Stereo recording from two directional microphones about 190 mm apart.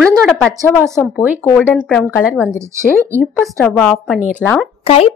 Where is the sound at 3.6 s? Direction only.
5° left (ahead or behind).